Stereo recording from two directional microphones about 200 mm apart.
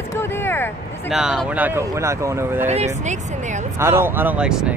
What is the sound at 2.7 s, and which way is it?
Speech, 35° right (ahead or behind).